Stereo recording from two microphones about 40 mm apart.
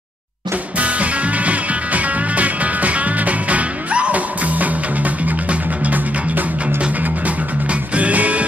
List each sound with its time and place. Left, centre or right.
0.7 s music: right